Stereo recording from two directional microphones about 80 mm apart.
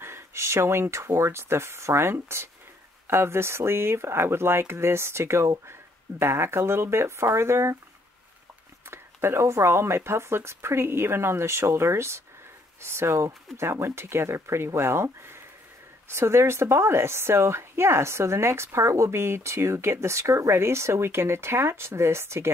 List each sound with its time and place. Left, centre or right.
0.0 s a woman's voice: right
8.9 s a woman's voice: right